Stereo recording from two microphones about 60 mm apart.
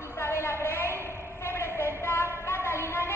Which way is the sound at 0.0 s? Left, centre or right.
Left.